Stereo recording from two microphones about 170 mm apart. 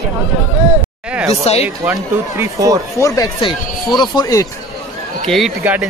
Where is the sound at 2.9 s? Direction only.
20° left (ahead or behind).